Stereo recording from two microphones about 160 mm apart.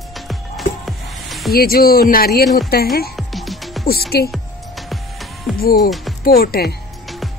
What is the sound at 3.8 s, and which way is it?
Speech, 70° left (ahead or behind).